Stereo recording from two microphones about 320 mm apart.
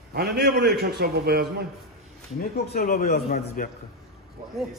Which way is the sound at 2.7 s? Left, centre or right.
Left.